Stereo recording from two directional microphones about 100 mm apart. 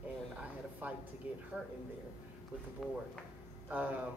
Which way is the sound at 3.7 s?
15° right (ahead or behind).